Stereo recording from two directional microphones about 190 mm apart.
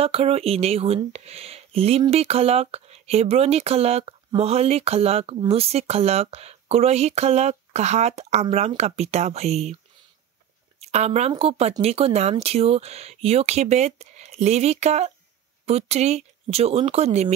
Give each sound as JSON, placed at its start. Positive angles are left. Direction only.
{"t": 0.0, "sound": "speech", "side_deg": -30}
{"t": 10.8, "sound": "speech", "side_deg": -35}